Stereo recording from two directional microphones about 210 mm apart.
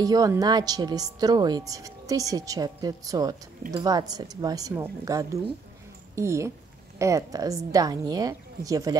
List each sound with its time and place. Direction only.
0.0 s speech: 15° right (ahead or behind)